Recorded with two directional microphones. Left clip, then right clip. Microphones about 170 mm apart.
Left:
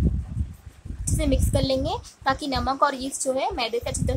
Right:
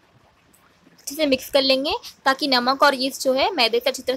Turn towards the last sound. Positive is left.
turn(degrees=-20)  # may be behind; listen again after turning